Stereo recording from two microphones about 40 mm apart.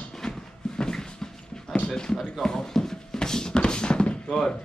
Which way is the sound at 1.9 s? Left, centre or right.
Centre.